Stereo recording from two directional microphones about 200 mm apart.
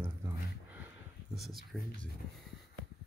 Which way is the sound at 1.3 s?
Centre (ahead or behind).